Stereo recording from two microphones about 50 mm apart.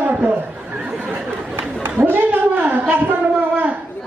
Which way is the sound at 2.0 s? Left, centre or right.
Right.